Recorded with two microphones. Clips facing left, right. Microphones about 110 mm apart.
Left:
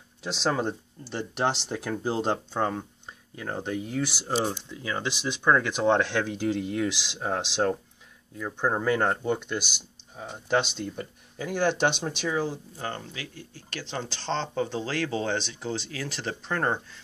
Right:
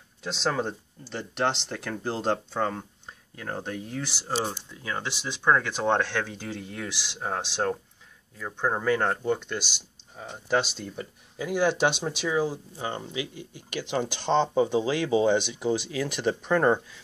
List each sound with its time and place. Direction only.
0.2 s speech: 5° left (ahead or behind)